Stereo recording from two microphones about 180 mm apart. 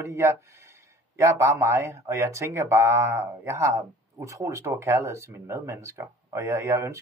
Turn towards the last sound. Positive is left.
turn(degrees=-15)  # may be behind; listen again after turning